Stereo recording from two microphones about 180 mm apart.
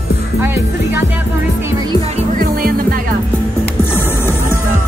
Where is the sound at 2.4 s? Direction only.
55° right (ahead or behind).